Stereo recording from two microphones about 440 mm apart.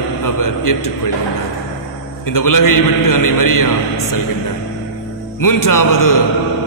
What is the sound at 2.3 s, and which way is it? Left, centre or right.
A man's voice, left.